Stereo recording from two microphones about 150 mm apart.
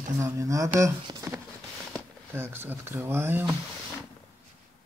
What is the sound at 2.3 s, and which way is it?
Speech, 15° right (ahead or behind).